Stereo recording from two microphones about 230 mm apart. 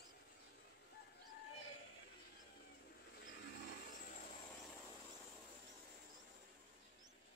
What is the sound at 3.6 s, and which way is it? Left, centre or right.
Vehicle, left.